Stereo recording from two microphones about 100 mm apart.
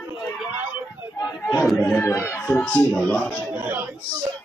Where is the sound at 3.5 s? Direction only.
20° right (ahead or behind).